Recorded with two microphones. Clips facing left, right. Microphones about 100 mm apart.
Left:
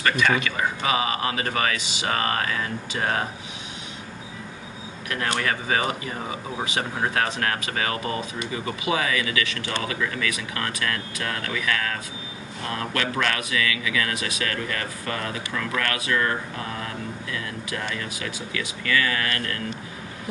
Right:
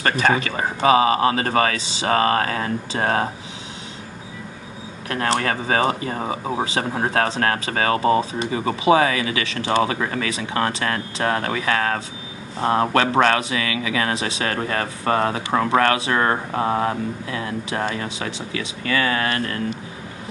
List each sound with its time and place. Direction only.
0.0 s speech: 35° right (ahead or behind)
5.1 s speech: 40° right (ahead or behind)
6.1 s speech: 50° right (ahead or behind)
7.0 s speech: 35° right (ahead or behind)